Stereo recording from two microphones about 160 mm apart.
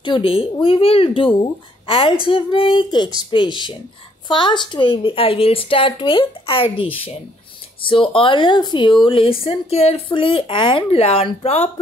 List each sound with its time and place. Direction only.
0.0 s a woman's voice: 35° left (ahead or behind)